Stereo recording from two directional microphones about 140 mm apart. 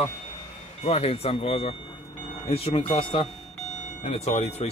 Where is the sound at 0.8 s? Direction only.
45° left (ahead or behind).